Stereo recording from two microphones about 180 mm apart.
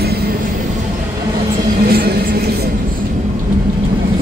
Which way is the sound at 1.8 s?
60° right (ahead or behind).